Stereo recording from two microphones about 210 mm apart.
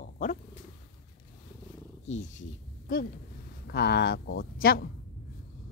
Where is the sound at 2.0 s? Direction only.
35° left (ahead or behind).